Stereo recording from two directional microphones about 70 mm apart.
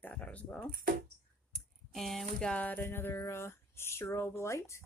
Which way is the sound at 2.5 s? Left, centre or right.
Left.